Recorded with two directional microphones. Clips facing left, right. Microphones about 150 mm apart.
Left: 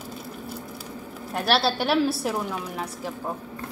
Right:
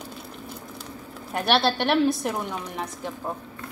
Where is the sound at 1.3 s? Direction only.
Centre (ahead or behind).